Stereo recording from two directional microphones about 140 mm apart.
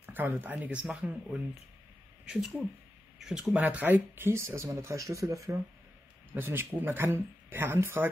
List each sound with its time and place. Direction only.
0.0 s speech: 15° right (ahead or behind)
2.2 s speech: 5° right (ahead or behind)